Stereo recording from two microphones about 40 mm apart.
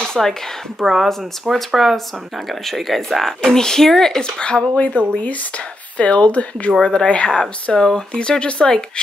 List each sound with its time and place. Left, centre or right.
0.1 s speech: centre
0.7 s speech: centre
4.2 s speech: left